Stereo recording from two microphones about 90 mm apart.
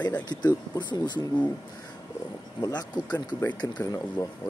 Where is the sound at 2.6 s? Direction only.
45° left (ahead or behind).